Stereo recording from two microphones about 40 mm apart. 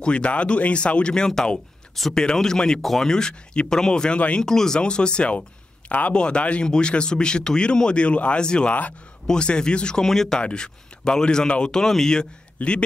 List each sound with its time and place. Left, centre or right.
0.0 s speech: left
2.0 s speech: centre
2.8 s speech: centre
3.1 s speech: centre
5.9 s speech: left
6.1 s speech: left
10.0 s speech: centre
10.4 s speech: left
11.7 s speech: centre
12.6 s a man's voice: left